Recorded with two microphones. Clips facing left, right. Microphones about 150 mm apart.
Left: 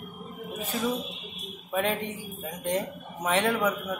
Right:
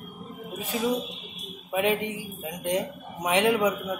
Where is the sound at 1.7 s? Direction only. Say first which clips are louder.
Right 3 dB; 15° right (ahead or behind).